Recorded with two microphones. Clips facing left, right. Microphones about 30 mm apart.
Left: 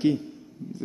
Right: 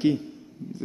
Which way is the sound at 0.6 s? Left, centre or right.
Right.